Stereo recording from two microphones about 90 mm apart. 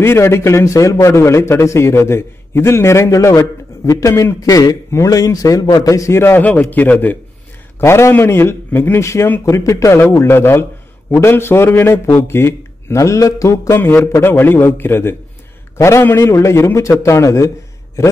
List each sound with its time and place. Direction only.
0.0 s a man's voice: 30° left (ahead or behind)